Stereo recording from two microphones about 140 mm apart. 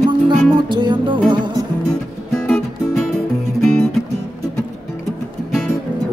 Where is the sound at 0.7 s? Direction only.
35° right (ahead or behind).